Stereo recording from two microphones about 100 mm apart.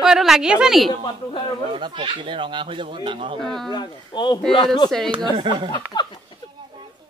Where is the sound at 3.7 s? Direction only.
50° left (ahead or behind).